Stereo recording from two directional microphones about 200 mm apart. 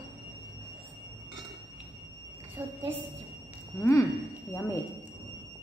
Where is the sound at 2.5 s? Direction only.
10° right (ahead or behind).